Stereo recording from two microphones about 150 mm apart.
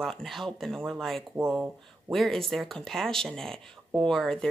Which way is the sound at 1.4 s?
15° right (ahead or behind).